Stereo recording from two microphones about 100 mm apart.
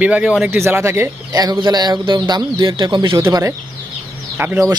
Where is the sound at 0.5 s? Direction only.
20° right (ahead or behind).